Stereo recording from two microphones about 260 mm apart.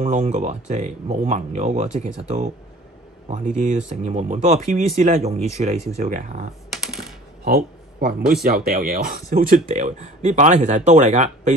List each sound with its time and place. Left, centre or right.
0.0 s speech: right
6.7 s typing: centre
7.4 s speech: right